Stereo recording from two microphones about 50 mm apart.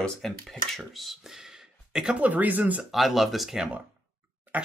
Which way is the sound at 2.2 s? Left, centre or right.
Right.